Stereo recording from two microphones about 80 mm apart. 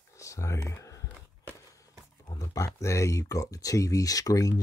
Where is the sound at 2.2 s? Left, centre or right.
Left.